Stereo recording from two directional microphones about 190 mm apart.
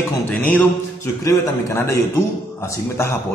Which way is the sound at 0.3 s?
10° left (ahead or behind).